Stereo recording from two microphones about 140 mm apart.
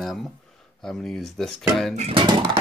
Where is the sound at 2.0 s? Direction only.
40° right (ahead or behind).